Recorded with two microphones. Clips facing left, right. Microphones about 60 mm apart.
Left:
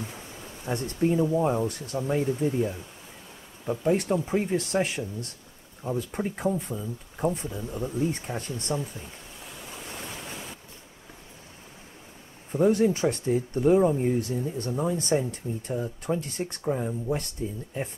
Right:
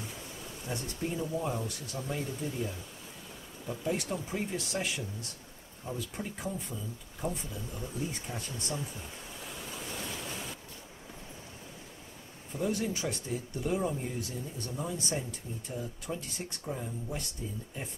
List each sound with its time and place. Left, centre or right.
0.7 s speech: left
3.8 s speech: left
9.4 s waves: centre
9.8 s waves: left
12.5 s speech: left